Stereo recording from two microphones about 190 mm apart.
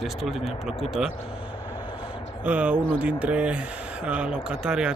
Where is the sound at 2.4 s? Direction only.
5° right (ahead or behind).